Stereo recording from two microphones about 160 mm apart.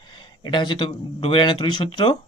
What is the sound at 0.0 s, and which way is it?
Speech, 30° left (ahead or behind).